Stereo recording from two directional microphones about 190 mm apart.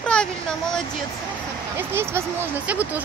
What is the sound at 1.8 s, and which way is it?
Speech, 10° right (ahead or behind).